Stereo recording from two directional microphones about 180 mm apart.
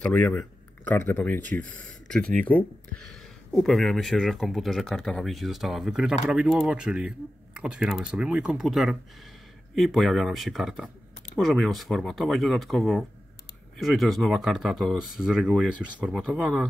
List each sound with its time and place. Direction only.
0.0 s speech: 10° left (ahead or behind)
1.4 s speech: 45° right (ahead or behind)
2.0 s speech: 5° left (ahead or behind)